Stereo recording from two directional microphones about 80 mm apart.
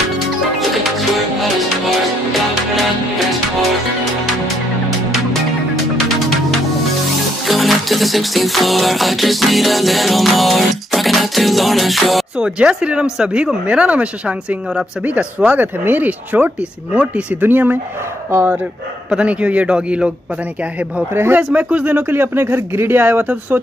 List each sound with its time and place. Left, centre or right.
7.4 s music: centre
12.5 s speech: centre
18.3 s speech: right
19.0 s speech: centre
21.1 s speech: right